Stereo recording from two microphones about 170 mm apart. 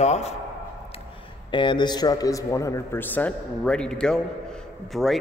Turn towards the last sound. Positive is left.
turn(degrees=0)  # may be behind; listen again after turning